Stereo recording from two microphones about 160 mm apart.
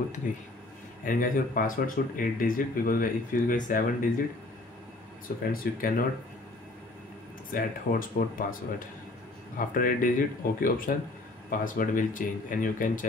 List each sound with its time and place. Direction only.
0.2 s speech: 55° left (ahead or behind)
5.5 s speech: 65° left (ahead or behind)
7.5 s speech: 60° left (ahead or behind)